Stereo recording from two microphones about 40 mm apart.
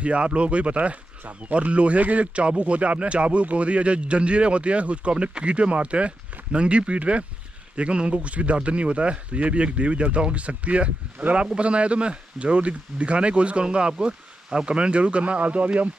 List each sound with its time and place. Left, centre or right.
0.0 s speech: right